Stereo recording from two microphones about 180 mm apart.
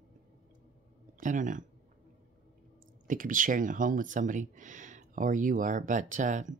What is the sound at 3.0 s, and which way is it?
Speech, 50° right (ahead or behind).